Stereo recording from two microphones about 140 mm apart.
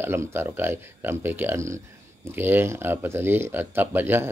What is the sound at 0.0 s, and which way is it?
Speech, 15° right (ahead or behind).